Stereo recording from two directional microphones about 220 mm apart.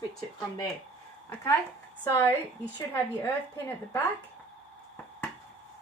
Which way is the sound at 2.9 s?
10° left (ahead or behind).